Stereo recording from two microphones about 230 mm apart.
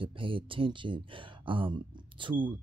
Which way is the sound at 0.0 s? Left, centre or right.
Right.